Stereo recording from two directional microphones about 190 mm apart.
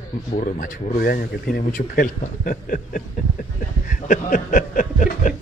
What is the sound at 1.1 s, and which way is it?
A man's voice, 50° left (ahead or behind).